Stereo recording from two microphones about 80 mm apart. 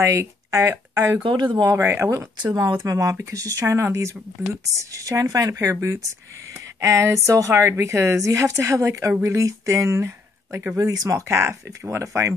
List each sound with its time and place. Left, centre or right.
0.0 s speech: right
1.2 s speech: right
1.8 s speech: right
2.5 s speech: right